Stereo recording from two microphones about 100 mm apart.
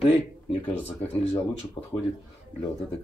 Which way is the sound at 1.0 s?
90° left.